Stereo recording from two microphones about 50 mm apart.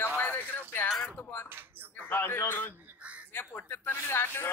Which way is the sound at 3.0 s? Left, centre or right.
Right.